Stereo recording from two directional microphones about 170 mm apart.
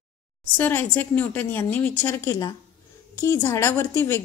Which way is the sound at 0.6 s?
10° left (ahead or behind).